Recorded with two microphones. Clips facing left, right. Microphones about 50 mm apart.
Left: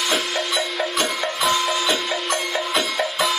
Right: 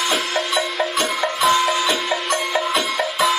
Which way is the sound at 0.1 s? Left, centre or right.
Centre.